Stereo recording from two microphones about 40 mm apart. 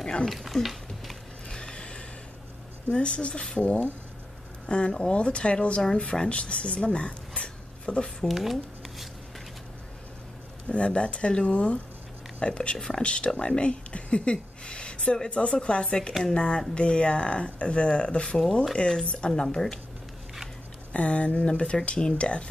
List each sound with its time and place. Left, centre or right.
0.2 s speech: centre
1.5 s a sound: left
2.9 s speech: left
8.4 s speech: centre
10.7 s speech: left
13.0 s speech: left
13.3 s speech: centre
13.6 s speech: left
16.1 s speech: centre
16.3 s speech: left
20.9 s speech: left